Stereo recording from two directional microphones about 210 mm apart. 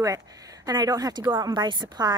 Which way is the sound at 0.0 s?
15° right (ahead or behind).